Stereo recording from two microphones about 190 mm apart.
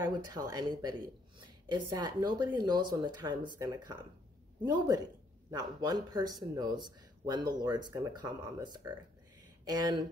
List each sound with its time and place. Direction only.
0.0 s speech: 20° right (ahead or behind)